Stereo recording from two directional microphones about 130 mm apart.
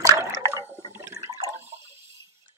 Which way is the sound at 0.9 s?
20° right (ahead or behind).